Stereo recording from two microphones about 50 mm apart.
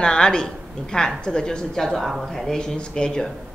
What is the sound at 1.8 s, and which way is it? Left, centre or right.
Speech, centre.